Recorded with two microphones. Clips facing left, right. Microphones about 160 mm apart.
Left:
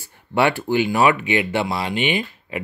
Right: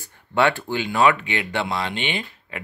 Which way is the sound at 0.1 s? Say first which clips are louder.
Left 1 dB; 15° left (ahead or behind).